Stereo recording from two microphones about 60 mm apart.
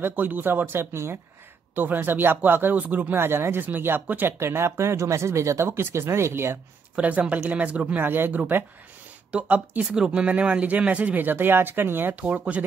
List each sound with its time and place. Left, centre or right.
0.0 s speech: right
1.8 s speech: right
4.3 s speech: right
7.0 s speech: right
8.0 s speech: right
9.3 s speech: right
12.2 s speech: right